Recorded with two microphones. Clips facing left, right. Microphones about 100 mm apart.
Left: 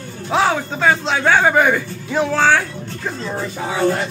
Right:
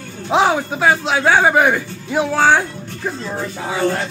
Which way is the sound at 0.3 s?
15° right (ahead or behind).